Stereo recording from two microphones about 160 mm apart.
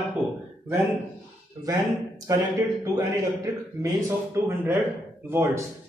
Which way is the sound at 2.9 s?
20° right (ahead or behind).